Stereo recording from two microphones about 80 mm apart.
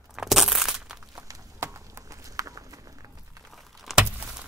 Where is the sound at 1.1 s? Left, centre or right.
Right.